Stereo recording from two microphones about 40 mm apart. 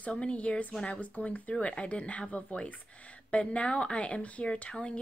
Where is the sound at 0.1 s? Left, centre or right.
Left.